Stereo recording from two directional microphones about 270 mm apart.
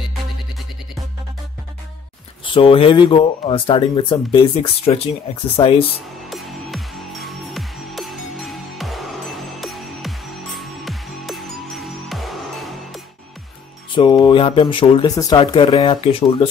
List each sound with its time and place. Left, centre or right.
2.5 s speech: centre
6.3 s music: centre
13.9 s speech: centre